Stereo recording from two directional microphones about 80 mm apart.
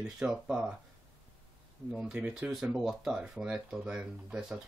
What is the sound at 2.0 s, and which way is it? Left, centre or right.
Speech, centre.